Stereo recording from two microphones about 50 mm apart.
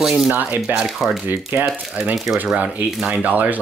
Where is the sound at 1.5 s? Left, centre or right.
Right.